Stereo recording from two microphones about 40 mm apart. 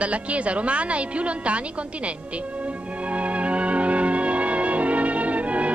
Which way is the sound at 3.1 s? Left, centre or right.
Right.